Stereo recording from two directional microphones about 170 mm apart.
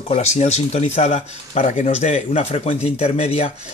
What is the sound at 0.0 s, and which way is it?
Speech, 40° left (ahead or behind).